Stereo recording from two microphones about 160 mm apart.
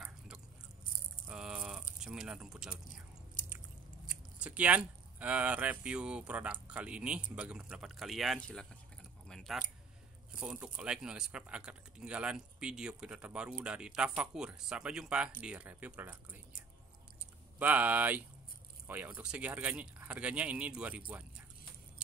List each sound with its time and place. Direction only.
1.2 s a sound: 5° right (ahead or behind)
2.0 s speech: 5° right (ahead or behind)
4.4 s speech: 10° right (ahead or behind)
9.3 s keys jangling: centre (ahead or behind)
10.4 s speech: 5° right (ahead or behind)
17.6 s speech: 10° right (ahead or behind)